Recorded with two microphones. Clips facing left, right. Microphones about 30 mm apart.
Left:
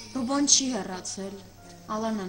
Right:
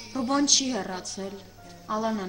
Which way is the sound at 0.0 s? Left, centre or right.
Centre.